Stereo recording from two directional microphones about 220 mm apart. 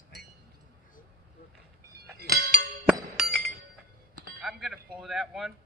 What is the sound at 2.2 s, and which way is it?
Speech, 45° right (ahead or behind).